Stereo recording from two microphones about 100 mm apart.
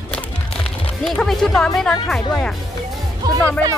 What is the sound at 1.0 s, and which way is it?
Speech, 5° left (ahead or behind).